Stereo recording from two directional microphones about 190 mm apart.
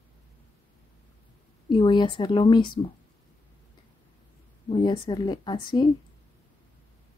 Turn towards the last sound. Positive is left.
turn(degrees=20)  # may be behind; listen again after turning